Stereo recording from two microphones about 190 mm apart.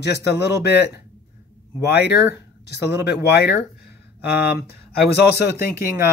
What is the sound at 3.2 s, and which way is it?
Speech, 60° left (ahead or behind).